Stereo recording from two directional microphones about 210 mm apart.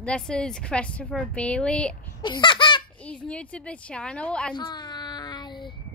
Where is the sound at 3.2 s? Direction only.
5° left (ahead or behind).